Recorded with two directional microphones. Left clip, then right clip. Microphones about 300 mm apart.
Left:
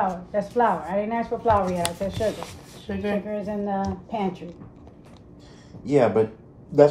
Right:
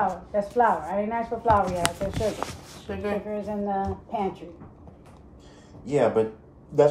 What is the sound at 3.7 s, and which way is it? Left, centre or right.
Speech, left.